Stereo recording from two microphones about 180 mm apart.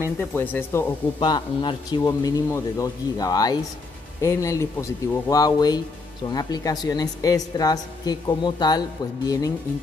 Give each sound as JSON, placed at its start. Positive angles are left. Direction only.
{"t": 0.3, "sound": "speech", "side_deg": 10}
{"t": 1.2, "sound": "a woman's voice", "side_deg": 25}